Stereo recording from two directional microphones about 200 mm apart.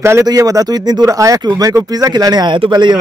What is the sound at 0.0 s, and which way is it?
Speech, 15° right (ahead or behind).